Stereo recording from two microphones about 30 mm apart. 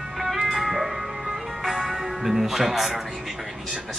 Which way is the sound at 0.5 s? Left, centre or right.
Centre.